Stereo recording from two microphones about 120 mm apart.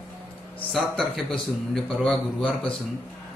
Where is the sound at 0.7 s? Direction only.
5° left (ahead or behind).